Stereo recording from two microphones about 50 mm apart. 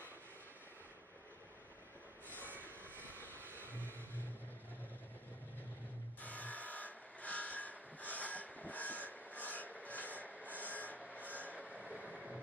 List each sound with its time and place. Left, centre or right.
2.3 s train: right
6.2 s a sound: left
11.8 s vehicle: right